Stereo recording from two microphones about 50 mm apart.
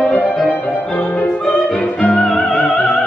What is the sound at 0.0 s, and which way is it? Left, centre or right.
Music, left.